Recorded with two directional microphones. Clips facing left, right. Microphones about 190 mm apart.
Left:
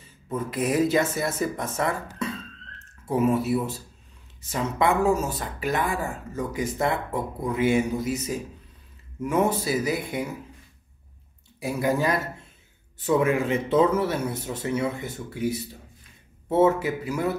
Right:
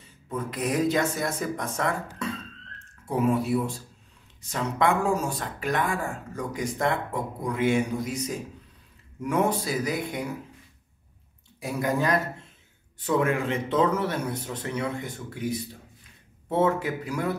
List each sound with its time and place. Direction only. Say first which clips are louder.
0.3 s speech: left 3 dB; 5° left (ahead or behind)
9.2 s speech: left 2 dB; 5° left (ahead or behind)
11.6 s speech: left 2 dB; 5° left (ahead or behind)